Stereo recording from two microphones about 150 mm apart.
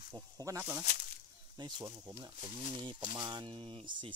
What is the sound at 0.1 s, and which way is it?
Speech, 20° right (ahead or behind).